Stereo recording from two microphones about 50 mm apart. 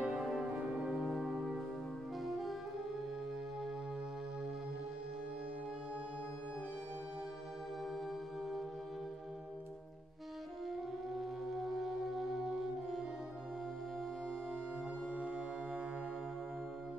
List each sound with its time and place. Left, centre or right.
0.0 s music: centre
0.9 s music: centre
11.1 s music: centre
15.1 s music: centre